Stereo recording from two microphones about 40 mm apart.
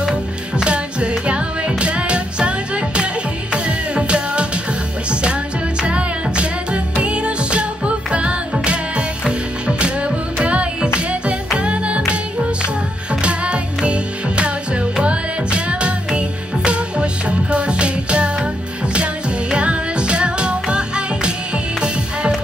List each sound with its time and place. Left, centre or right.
0.0 s music: right
13.1 s music: right
19.5 s music: right